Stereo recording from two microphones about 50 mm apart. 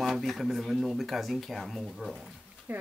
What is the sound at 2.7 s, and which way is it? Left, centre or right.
Speech, right.